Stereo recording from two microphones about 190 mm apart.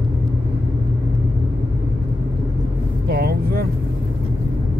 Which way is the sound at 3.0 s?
55° right (ahead or behind).